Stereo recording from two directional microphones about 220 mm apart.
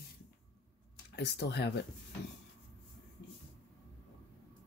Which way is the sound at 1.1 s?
50° left (ahead or behind).